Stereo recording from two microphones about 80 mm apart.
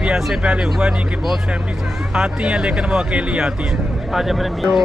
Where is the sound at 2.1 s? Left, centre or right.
Centre.